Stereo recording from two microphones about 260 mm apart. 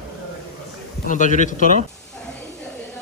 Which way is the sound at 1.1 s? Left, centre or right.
Left.